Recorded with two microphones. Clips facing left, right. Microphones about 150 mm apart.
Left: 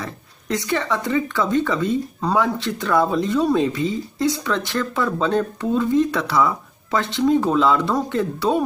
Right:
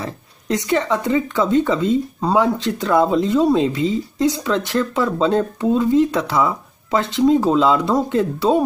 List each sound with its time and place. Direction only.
0.0 s speech: 20° right (ahead or behind)